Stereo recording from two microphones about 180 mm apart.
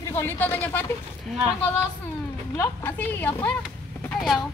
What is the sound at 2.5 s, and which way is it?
A woman's voice, 10° left (ahead or behind).